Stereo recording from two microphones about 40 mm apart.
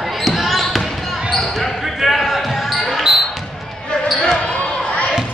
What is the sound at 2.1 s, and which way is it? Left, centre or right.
Basketball bounce, centre.